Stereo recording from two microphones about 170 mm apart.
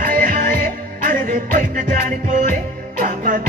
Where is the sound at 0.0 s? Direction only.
55° right (ahead or behind).